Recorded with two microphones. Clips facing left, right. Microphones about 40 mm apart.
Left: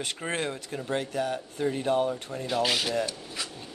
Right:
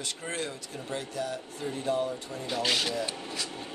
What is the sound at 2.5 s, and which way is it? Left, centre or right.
Filing, centre.